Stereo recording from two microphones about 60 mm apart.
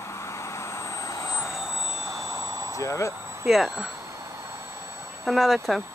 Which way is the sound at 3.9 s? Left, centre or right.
Right.